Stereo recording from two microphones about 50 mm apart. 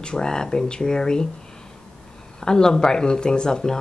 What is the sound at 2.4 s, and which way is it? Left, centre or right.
A woman's voice, centre.